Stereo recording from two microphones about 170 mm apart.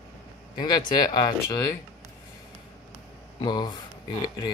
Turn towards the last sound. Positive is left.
turn(degrees=25)  # may be behind; listen again after turning